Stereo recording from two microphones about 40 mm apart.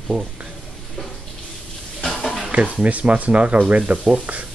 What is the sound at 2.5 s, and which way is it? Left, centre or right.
Speech, right.